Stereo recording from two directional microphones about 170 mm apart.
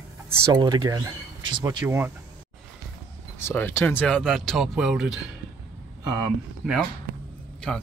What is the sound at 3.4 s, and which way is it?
Speech, 15° left (ahead or behind).